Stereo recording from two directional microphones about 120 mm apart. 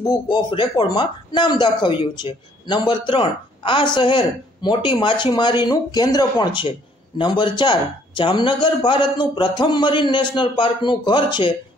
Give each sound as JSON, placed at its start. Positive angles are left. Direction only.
{"t": 0.0, "sound": "speech", "side_deg": 35}